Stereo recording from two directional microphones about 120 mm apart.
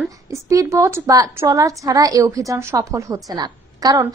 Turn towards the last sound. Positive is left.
turn(degrees=-30)  # may be behind; listen again after turning